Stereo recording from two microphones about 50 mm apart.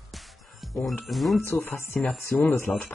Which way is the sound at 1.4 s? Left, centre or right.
Left.